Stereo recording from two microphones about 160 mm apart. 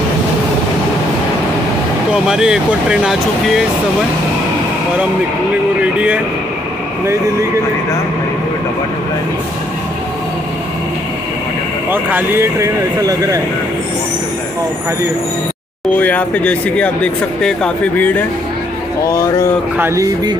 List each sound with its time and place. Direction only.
2.2 s speech: 5° right (ahead or behind)
5.8 s speech: 10° right (ahead or behind)
11.9 s speech: 10° right (ahead or behind)
16.0 s speech: 10° left (ahead or behind)
19.8 s speech: 20° right (ahead or behind)